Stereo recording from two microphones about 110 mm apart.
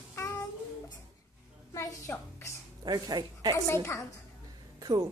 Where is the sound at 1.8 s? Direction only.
25° left (ahead or behind).